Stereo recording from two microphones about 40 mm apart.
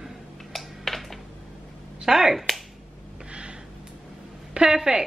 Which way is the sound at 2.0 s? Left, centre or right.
Centre.